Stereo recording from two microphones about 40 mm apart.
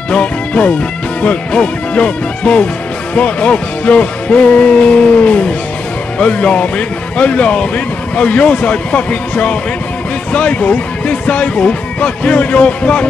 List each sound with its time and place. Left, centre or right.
0.1 s speech: left